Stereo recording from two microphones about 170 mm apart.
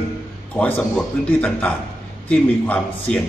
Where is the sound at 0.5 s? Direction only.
10° left (ahead or behind).